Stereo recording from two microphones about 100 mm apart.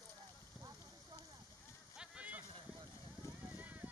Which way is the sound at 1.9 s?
10° right (ahead or behind).